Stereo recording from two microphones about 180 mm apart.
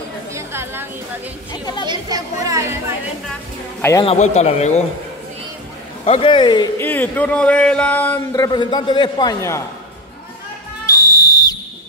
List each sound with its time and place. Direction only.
0.3 s chatter: 15° right (ahead or behind)
1.5 s a man's voice: 25° left (ahead or behind)
1.9 s speech: 20° right (ahead or behind)
4.0 s a man's voice: 35° left (ahead or behind)
6.0 s a man's voice: 30° left (ahead or behind)
6.8 s a sound: 10° left (ahead or behind)
8.3 s a man's voice: 25° left (ahead or behind)
10.9 s whistle: 20° left (ahead or behind)